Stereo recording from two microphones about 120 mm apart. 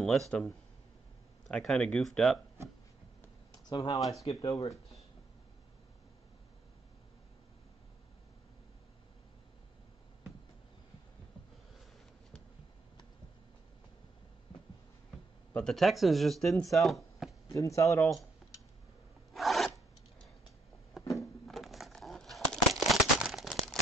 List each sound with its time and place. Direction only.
1.5 s speech: 5° left (ahead or behind)
3.5 s speech: 35° left (ahead or behind)
15.5 s speech: 5° left (ahead or behind)
17.5 s speech: 25° left (ahead or behind)
19.3 s filing: centre (ahead or behind)
21.2 s a sound: centre (ahead or behind)